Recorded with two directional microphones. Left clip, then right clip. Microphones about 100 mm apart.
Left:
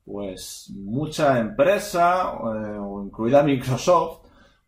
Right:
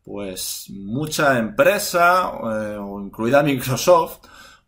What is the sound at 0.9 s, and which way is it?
Speech, 20° right (ahead or behind).